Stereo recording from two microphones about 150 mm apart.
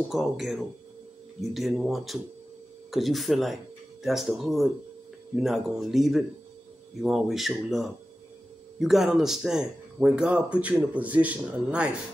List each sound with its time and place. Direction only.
0.1 s speech: centre (ahead or behind)